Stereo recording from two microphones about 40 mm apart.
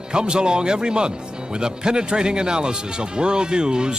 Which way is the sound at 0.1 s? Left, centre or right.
Right.